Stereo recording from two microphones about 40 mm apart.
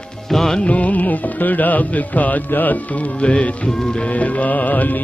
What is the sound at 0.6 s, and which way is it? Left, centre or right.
Music, left.